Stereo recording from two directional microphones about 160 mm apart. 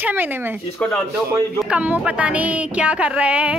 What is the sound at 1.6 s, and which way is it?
A woman's voice, 10° right (ahead or behind).